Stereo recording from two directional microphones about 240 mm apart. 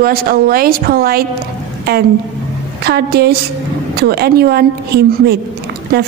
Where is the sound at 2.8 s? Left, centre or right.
Right.